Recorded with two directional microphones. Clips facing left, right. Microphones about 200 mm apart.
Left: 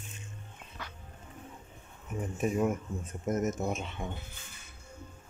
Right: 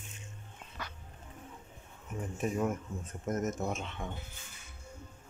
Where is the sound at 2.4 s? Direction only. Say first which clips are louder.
Left 3 dB; 10° left (ahead or behind).